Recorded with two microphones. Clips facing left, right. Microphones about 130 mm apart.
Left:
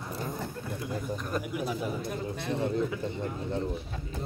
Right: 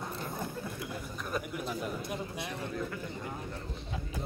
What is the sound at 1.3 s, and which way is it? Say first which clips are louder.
A man's voice: left 2 dB; 5° left (ahead or behind).